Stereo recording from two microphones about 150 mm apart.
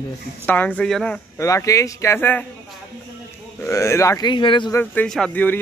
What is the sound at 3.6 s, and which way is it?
Speech, 20° left (ahead or behind).